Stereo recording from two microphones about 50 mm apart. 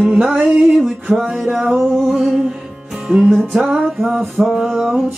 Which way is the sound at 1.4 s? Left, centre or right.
Centre.